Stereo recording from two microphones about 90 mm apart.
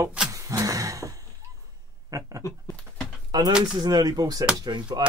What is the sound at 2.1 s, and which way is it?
Speech, 40° right (ahead or behind).